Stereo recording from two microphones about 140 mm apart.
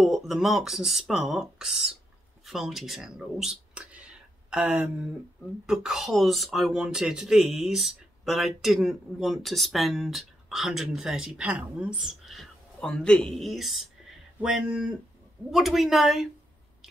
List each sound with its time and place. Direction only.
0.0 s speech: centre (ahead or behind)
15.5 s speech: centre (ahead or behind)